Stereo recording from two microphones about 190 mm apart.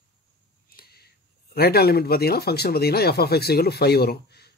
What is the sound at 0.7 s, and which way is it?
Speech, 55° left (ahead or behind).